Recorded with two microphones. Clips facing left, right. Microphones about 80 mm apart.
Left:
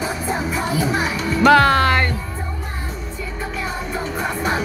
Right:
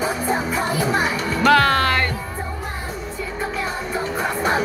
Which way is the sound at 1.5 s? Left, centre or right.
Centre.